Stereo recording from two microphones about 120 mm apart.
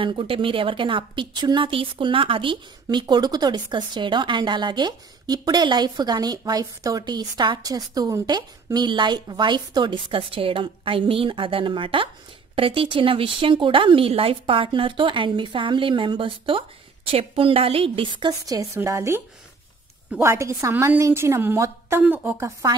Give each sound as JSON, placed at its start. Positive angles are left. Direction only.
{"t": 0.0, "sound": "a woman's voice", "side_deg": -45}
{"t": 18.6, "sound": "speech", "side_deg": -25}
{"t": 20.7, "sound": "a woman's voice", "side_deg": -15}
{"t": 22.6, "sound": "speech", "side_deg": -30}